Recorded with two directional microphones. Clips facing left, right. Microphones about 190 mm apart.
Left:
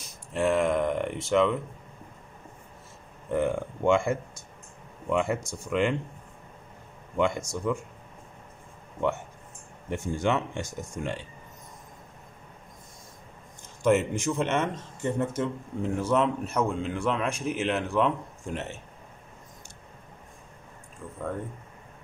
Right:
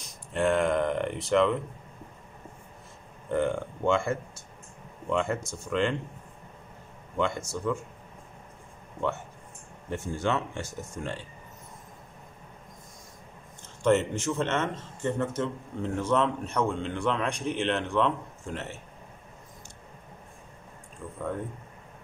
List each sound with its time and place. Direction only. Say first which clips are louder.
0.3 s speech: even; centre (ahead or behind)
3.3 s speech: left 1 dB; 5° left (ahead or behind)
7.2 s speech: left 3 dB; 15° left (ahead or behind)
9.8 s speech: left 2 dB; 15° left (ahead or behind)
13.8 s speech: left 1 dB; 10° left (ahead or behind)